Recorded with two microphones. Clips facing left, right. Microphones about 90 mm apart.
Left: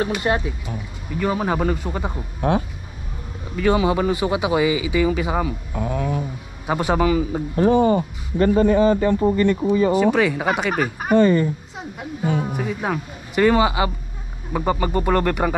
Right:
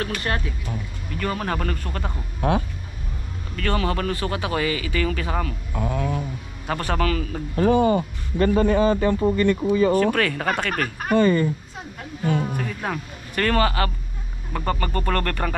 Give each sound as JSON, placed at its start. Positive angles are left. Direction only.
{"t": 0.0, "sound": "a man's voice", "side_deg": 15}